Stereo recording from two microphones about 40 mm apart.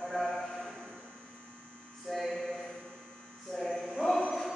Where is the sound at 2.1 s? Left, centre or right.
Centre.